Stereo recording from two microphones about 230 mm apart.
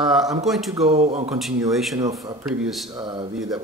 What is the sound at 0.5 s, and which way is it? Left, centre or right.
Speech, centre.